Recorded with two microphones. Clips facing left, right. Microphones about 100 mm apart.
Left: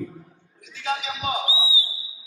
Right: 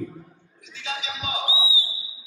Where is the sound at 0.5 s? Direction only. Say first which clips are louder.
Left 6 dB; 50° left (ahead or behind).